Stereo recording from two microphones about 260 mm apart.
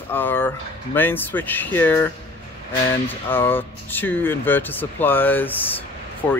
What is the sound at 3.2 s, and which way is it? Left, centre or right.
Speech, centre.